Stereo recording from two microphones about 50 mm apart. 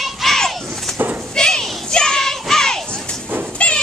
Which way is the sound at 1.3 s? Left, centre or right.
Centre.